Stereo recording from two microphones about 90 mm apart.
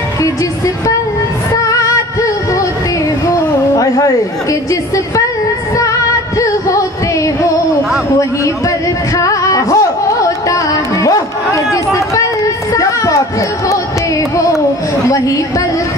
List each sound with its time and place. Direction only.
1.5 s music: 40° left (ahead or behind)
3.3 s a sound: 40° left (ahead or behind)
9.2 s music: 40° left (ahead or behind)
10.5 s speech: 35° left (ahead or behind)